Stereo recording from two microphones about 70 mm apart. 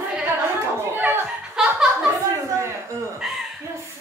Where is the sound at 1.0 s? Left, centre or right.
Right.